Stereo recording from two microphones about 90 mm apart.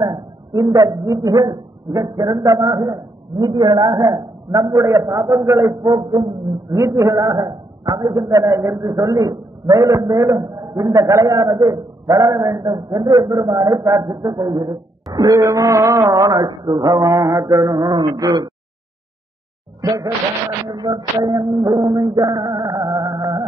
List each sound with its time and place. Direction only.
0.0 s a man's voice: 45° right (ahead or behind)
3.4 s a man's voice: 50° right (ahead or behind)
6.8 s a man's voice: 40° right (ahead or behind)
19.8 s speech: 40° right (ahead or behind)
20.7 s music: 50° right (ahead or behind)